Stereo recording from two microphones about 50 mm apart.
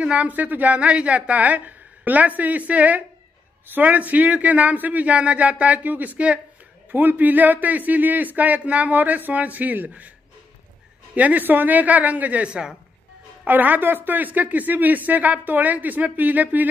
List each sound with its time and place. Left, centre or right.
0.0 s speech: right
6.9 s speech: right
11.1 s speech: right
13.5 s speech: right